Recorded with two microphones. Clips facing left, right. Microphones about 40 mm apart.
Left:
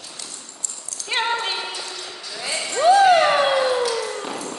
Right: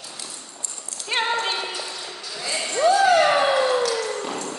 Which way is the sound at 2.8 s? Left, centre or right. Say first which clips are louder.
Left 3 dB; left.